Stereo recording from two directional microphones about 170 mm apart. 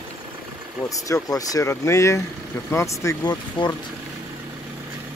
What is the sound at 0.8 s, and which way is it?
Speech, 20° left (ahead or behind).